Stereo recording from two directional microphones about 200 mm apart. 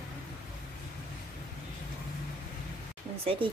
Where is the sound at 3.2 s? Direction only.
25° right (ahead or behind).